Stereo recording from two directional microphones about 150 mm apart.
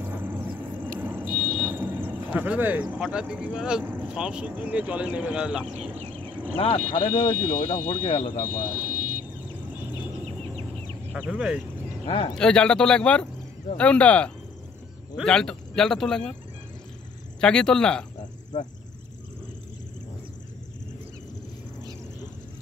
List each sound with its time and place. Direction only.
0.0 s vehicle: 15° right (ahead or behind)
0.9 s speech: 15° right (ahead or behind)
6.6 s speech: 35° left (ahead or behind)
8.7 s vehicle: 60° right (ahead or behind)
10.2 s a sound: 45° right (ahead or behind)
11.1 s speech: 5° right (ahead or behind)
12.1 s speech: 35° left (ahead or behind)
12.4 s speech: 5° left (ahead or behind)
17.4 s speech: 5° left (ahead or behind)